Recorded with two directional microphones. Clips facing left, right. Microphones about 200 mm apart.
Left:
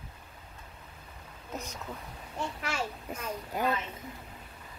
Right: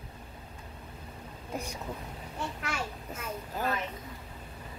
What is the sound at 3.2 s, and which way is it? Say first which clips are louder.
Speech: left 2 dB; 15° left (ahead or behind).